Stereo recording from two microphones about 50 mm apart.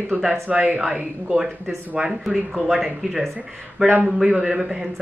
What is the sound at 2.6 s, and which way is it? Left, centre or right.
Speech, centre.